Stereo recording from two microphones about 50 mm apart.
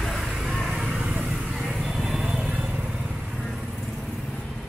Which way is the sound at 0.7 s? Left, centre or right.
Centre.